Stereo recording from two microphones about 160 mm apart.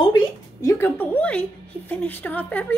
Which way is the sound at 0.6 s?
15° left (ahead or behind).